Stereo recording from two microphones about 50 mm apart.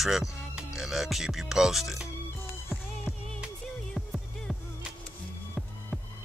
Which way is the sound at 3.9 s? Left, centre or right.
Centre.